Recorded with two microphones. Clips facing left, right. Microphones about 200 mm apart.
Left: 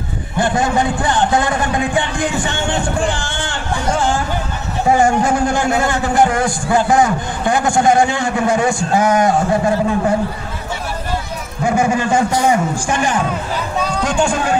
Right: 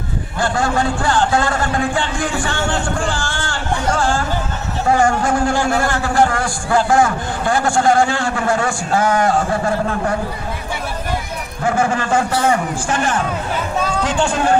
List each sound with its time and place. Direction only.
0.4 s a man's voice: 20° left (ahead or behind)
4.8 s a man's voice: 20° left (ahead or behind)
11.6 s a man's voice: 15° left (ahead or behind)
14.0 s speech: 10° left (ahead or behind)